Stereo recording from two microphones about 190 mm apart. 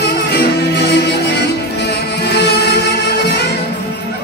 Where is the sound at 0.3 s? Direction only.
60° left (ahead or behind).